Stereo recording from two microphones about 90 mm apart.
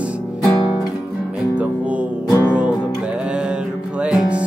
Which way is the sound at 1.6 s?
15° right (ahead or behind).